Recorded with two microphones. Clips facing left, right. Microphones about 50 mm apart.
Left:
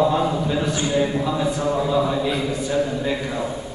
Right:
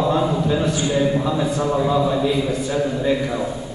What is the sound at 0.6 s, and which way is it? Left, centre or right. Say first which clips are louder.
Speech: right 2 dB; left.